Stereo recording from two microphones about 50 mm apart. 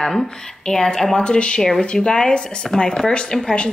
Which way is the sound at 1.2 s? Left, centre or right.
Centre.